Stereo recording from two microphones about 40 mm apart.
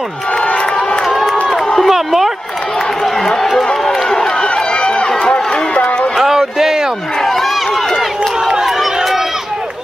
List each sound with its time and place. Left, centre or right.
1.9 s speech: centre
3.8 s run: centre
4.4 s run: left
6.1 s a sound: centre
8.5 s run: centre